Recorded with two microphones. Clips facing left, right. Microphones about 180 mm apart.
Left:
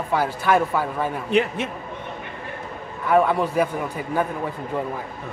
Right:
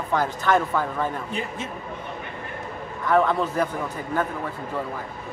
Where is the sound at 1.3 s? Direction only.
70° left (ahead or behind).